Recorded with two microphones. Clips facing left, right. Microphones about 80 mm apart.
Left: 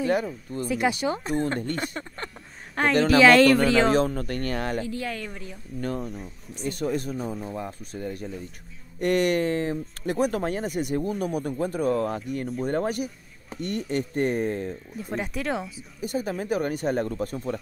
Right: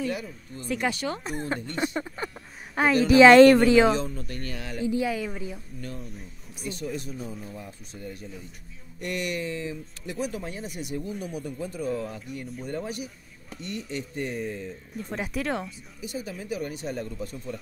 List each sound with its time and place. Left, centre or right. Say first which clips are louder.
0.0 s speech: left 6 dB; left
0.7 s speech: left 3 dB; centre
1.8 s speech: right 3 dB; centre
3.2 s speech: right 4 dB; right
3.9 s speech: left 6 dB; left
4.8 s speech: right 5 dB; centre
5.8 s speech: left 8 dB; left
15.0 s speech: even; centre
16.0 s speech: left 7 dB; left